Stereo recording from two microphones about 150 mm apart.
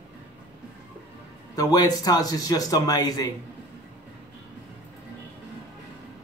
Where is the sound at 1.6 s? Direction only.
25° left (ahead or behind).